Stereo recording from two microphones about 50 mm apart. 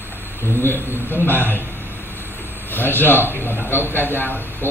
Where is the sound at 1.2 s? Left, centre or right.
Left.